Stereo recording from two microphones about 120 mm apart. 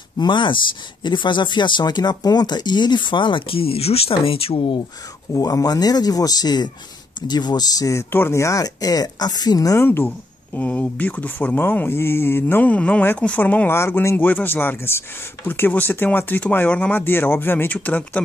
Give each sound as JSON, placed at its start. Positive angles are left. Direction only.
{"t": 0.2, "sound": "speech", "side_deg": 40}
{"t": 5.4, "sound": "speech", "side_deg": 30}
{"t": 9.8, "sound": "speech", "side_deg": 15}